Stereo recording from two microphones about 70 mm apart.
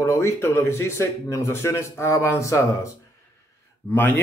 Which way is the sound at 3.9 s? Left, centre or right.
Left.